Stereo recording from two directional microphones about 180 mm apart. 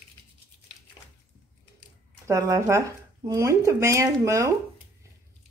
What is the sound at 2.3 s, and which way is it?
Speech, 15° right (ahead or behind).